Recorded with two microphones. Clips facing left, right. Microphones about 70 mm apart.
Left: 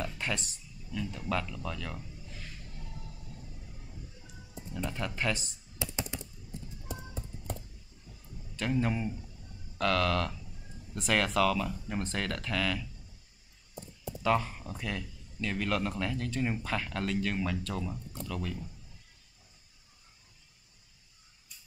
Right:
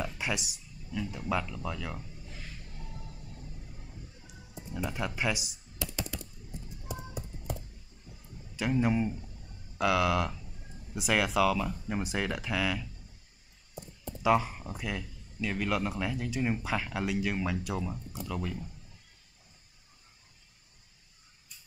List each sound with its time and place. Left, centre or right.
0.0 s a sound: centre
4.6 s speech: centre
5.8 s typing: left
6.9 s music: centre
8.5 s speech: centre
14.2 s speech: centre